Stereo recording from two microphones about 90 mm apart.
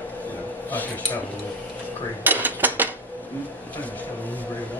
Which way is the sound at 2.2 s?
20° right (ahead or behind).